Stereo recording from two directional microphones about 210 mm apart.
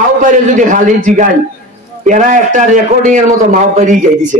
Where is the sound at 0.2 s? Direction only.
40° right (ahead or behind).